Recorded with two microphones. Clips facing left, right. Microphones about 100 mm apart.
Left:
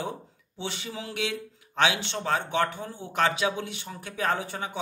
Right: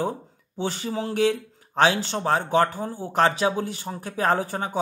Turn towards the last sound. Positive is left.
turn(degrees=-40)  # may be behind; listen again after turning